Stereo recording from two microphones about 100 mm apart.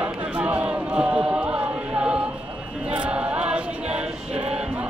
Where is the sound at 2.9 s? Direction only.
10° right (ahead or behind).